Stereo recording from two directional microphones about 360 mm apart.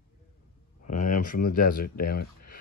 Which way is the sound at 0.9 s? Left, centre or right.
Left.